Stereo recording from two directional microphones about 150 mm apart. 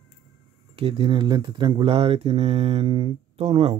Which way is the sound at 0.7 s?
40° right (ahead or behind).